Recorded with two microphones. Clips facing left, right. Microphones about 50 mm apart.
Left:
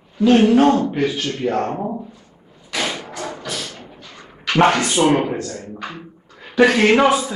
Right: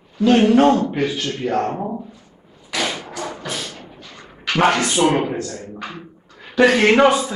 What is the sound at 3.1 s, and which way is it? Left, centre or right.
Music, centre.